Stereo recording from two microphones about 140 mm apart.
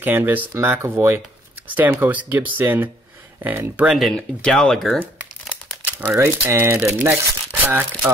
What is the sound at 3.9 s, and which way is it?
Speech, 5° left (ahead or behind).